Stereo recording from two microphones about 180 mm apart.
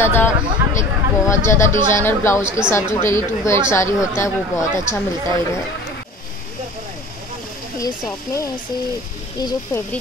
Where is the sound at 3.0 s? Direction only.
15° left (ahead or behind).